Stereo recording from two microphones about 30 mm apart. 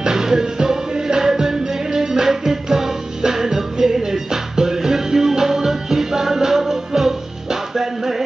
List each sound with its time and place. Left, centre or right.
0.0 s music: centre